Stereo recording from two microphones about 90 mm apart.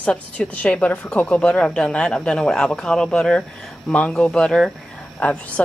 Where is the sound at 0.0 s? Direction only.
15° left (ahead or behind).